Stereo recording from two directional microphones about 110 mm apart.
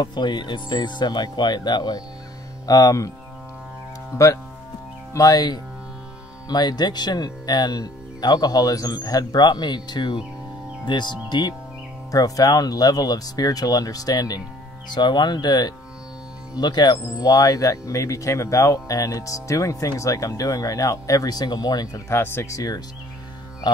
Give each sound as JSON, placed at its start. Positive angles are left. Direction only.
{"t": 0.0, "sound": "speech", "side_deg": 40}
{"t": 5.1, "sound": "speech", "side_deg": 30}
{"t": 22.1, "sound": "speech", "side_deg": 25}